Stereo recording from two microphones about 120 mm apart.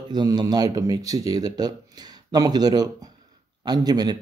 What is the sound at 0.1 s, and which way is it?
Speech, 35° right (ahead or behind).